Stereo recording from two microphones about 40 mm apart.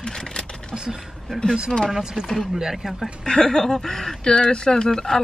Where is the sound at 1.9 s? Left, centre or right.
Centre.